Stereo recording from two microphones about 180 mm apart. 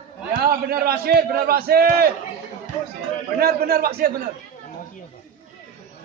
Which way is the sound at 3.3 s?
60° right (ahead or behind).